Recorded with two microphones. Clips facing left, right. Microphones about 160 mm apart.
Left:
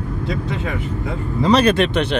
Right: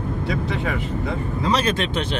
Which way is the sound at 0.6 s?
Centre (ahead or behind).